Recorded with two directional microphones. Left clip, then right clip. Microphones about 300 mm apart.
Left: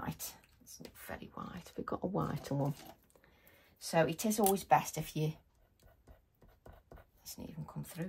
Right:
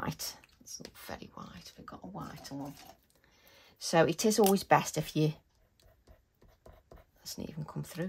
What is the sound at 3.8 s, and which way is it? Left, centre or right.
Speech, right.